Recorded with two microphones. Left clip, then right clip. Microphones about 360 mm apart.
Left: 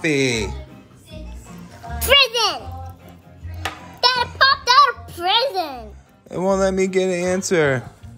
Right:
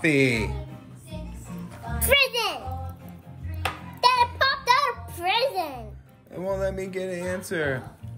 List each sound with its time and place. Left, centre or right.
0.0 s speech: centre
2.0 s a child's voice: left
4.0 s a sound: left
6.3 s speech: centre